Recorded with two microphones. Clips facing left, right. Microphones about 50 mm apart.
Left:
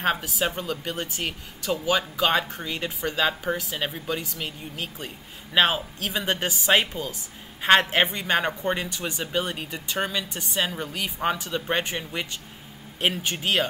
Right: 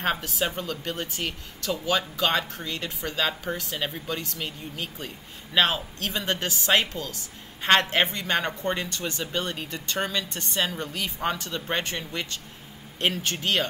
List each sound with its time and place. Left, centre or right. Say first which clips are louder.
0.0 s a woman's voice: left 2 dB; centre